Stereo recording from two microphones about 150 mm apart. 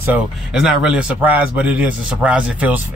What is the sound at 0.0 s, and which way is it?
A man's voice, 10° right (ahead or behind).